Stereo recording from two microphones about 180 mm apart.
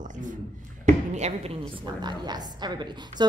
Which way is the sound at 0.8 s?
40° right (ahead or behind).